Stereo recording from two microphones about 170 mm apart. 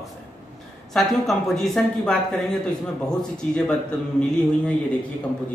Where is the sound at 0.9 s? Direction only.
Centre (ahead or behind).